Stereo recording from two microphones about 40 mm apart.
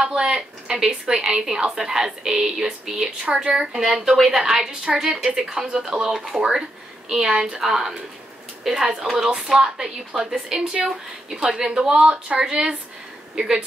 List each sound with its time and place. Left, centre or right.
0.0 s a woman's voice: right
4.2 s a woman's voice: centre
9.2 s a woman's voice: centre
11.9 s speech: right